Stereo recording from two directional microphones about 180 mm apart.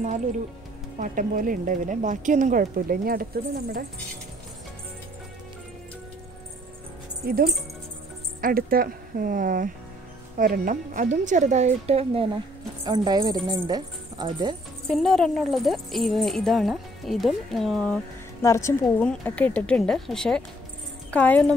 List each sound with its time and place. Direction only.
0.9 s speech: 50° right (ahead or behind)
7.2 s speech: 55° right (ahead or behind); by 14.5 s 25° right (ahead or behind)
14.9 s speech: centre (ahead or behind)
18.4 s a woman's voice: 15° left (ahead or behind)